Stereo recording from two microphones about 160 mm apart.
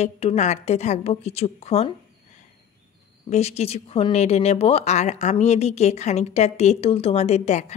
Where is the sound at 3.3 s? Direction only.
40° left (ahead or behind).